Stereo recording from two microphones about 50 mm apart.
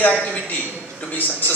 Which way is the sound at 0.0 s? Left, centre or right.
Left.